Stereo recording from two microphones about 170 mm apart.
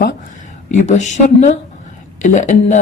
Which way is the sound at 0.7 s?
45° left (ahead or behind).